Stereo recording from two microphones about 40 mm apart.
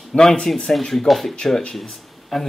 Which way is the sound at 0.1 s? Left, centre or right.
Centre.